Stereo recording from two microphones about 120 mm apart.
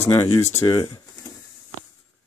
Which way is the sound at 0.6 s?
35° left (ahead or behind).